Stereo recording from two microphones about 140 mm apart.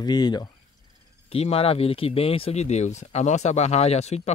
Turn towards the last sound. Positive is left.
turn(degrees=50)  # may be behind; listen again after turning